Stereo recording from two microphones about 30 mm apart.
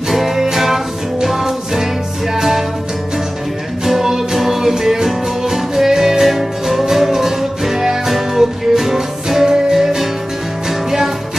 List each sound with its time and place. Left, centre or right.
0.1 s music: centre
3.8 s music: centre